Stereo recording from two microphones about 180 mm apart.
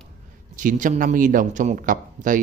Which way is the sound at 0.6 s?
45° right (ahead or behind).